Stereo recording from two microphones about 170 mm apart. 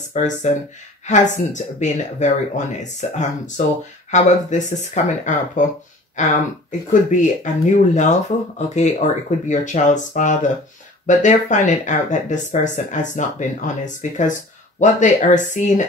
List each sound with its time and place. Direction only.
0.1 s speech: 45° left (ahead or behind)